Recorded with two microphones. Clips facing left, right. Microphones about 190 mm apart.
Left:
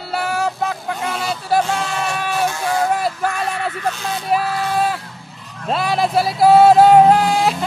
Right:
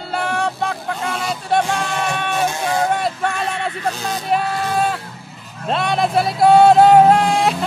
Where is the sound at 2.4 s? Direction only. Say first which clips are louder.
Even; 20° right (ahead or behind).